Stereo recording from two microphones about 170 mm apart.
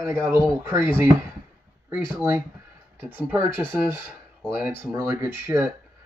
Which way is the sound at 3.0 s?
10° right (ahead or behind).